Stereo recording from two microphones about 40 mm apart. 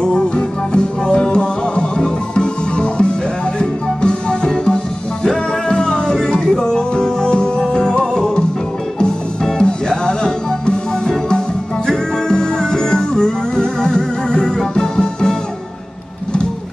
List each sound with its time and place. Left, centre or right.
0.0 s music: centre
9.6 s music: centre